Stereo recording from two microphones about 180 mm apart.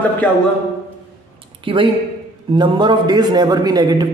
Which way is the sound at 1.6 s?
30° right (ahead or behind).